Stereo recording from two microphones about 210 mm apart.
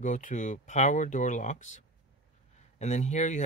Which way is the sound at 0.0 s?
35° left (ahead or behind).